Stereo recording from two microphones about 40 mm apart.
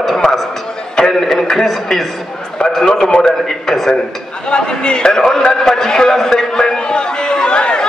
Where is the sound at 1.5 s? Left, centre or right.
Centre.